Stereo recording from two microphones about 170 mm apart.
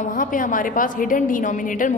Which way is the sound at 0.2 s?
50° left (ahead or behind).